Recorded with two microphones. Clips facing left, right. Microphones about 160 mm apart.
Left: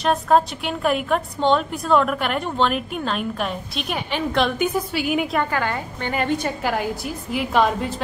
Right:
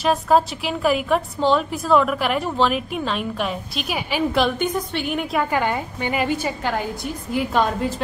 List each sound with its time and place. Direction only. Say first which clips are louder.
0.0 s a woman's voice: even; 5° right (ahead or behind)
4.6 s a woman's voice: left 1 dB; 5° left (ahead or behind)
5.5 s a woman's voice: right 2 dB; 15° right (ahead or behind); by 7.9 s centre (ahead or behind)